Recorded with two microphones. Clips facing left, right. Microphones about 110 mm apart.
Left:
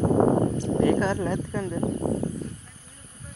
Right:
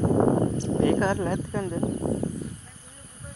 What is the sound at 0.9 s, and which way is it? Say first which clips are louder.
Speech: even; 15° right (ahead or behind).